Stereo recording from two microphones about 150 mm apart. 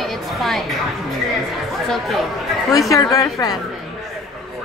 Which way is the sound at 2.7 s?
20° left (ahead or behind).